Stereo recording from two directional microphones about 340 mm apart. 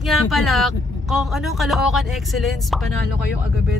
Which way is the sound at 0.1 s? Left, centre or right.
Centre.